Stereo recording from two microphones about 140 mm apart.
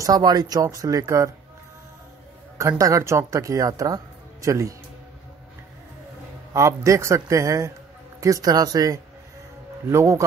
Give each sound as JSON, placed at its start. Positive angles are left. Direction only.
{"t": 0.0, "sound": "speech", "side_deg": -30}
{"t": 2.8, "sound": "speech", "side_deg": -20}
{"t": 6.5, "sound": "speech", "side_deg": -20}